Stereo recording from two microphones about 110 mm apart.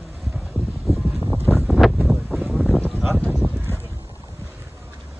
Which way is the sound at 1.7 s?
Centre (ahead or behind).